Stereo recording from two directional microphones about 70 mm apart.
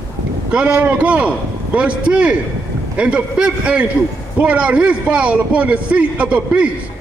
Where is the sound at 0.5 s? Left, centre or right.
Centre.